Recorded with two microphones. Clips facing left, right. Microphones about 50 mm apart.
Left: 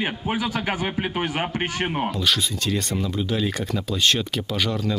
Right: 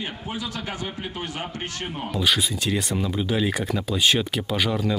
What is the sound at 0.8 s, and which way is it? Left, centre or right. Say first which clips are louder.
Speech: left 6 dB; left.